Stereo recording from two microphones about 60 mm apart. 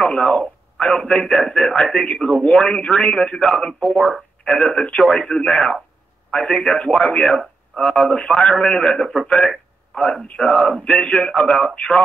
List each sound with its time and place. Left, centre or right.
0.0 s speech: centre
1.4 s a man's voice: centre
3.8 s speech: centre
4.5 s a man's voice: centre
10.3 s a man's voice: centre